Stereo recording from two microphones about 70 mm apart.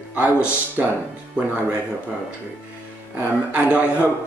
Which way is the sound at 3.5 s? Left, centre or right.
Centre.